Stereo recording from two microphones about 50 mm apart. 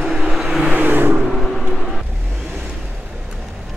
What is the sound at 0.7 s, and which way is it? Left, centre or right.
Vehicle, right.